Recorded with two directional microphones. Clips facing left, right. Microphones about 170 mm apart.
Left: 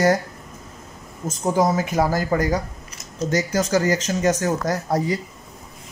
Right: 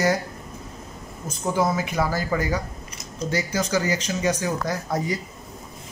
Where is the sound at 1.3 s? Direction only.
40° left (ahead or behind).